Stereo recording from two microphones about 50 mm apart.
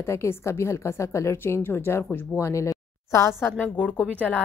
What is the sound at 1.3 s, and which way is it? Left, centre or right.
Speech, left.